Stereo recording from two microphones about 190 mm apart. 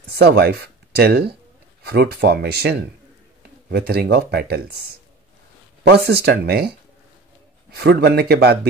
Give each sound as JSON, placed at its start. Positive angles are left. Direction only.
{"t": 0.2, "sound": "speech", "side_deg": -60}
{"t": 5.9, "sound": "speech", "side_deg": -60}
{"t": 7.7, "sound": "speech", "side_deg": -60}